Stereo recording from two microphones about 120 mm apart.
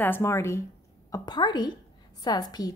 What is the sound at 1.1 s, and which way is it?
Speech, 35° left (ahead or behind).